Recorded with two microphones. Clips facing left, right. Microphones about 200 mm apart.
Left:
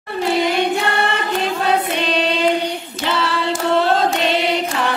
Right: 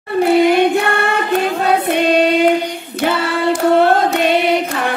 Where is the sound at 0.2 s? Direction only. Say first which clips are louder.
Right 7 dB; 55° right (ahead or behind).